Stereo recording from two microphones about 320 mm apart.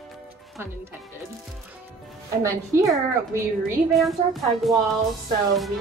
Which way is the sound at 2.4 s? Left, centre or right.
Centre.